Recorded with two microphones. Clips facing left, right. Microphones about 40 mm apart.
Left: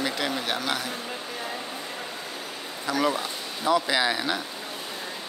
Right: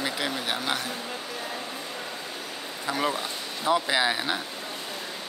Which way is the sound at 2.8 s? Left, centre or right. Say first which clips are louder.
Left 2 dB; centre.